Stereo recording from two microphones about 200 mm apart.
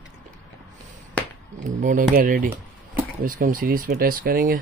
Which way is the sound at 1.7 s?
40° right (ahead or behind).